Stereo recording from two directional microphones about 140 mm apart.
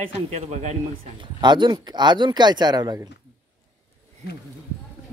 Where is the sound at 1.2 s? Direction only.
35° right (ahead or behind).